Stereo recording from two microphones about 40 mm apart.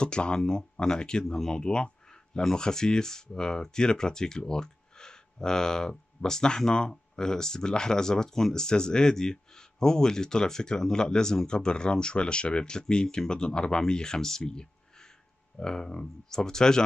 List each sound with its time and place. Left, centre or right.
0.0 s speech: left